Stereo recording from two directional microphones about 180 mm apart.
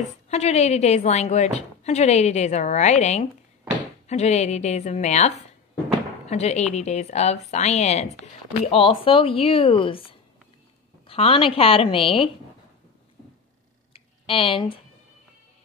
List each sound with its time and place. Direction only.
0.3 s a woman's voice: 35° left (ahead or behind)
11.1 s a woman's voice: 30° left (ahead or behind)
13.9 s a sound: 30° left (ahead or behind)